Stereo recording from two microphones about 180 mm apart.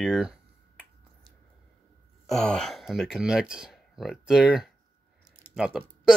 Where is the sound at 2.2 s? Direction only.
5° left (ahead or behind).